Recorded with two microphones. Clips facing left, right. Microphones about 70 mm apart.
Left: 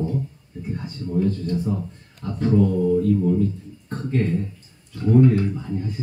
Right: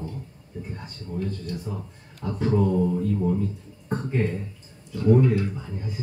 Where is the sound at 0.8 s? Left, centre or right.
Centre.